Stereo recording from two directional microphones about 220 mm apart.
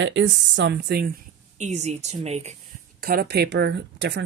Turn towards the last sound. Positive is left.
turn(degrees=-50)  # may be behind; listen again after turning